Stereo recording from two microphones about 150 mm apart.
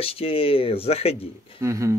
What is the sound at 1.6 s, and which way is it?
Speech, 20° right (ahead or behind).